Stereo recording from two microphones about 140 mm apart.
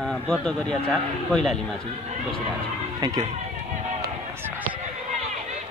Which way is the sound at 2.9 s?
30° right (ahead or behind).